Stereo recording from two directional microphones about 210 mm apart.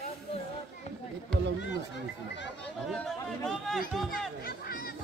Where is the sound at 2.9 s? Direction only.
Centre (ahead or behind).